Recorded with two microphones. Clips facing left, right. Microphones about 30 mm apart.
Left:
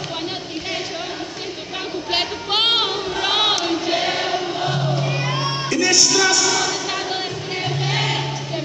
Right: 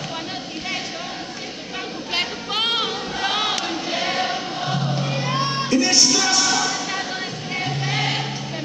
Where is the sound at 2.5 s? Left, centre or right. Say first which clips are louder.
Left 5 dB; left.